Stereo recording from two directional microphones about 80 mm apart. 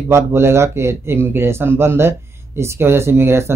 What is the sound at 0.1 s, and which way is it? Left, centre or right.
A man's voice, right.